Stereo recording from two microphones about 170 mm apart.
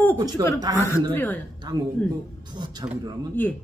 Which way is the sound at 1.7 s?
25° right (ahead or behind).